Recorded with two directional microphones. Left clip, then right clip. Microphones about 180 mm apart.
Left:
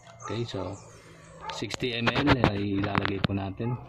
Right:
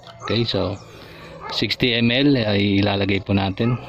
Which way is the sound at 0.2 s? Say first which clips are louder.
Right 12 dB; 40° right (ahead or behind).